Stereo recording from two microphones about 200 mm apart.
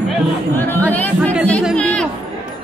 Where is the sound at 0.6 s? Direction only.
10° left (ahead or behind).